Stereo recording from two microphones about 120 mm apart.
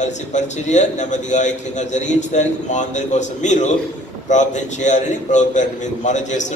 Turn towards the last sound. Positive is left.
turn(degrees=90)